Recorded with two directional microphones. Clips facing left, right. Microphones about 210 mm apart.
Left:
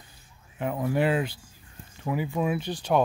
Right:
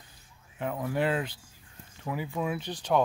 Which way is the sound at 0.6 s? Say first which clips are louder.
Left 4 dB; 10° left (ahead or behind).